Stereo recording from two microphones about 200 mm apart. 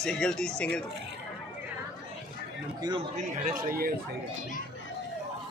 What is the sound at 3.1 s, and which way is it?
Speech, 45° right (ahead or behind).